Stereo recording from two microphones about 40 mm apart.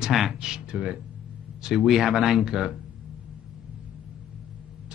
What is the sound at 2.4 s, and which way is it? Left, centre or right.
Speech, centre.